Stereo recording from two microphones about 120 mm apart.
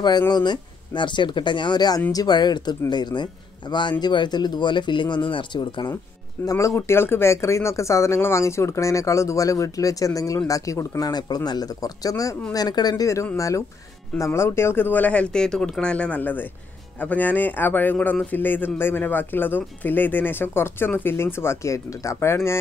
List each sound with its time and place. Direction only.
0.3 s speech: 40° left (ahead or behind)
6.4 s speech: 25° left (ahead or behind)